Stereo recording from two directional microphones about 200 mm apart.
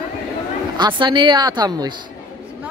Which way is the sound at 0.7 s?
25° right (ahead or behind).